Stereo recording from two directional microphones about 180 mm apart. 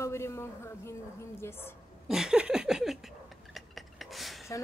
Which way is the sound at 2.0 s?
5° right (ahead or behind).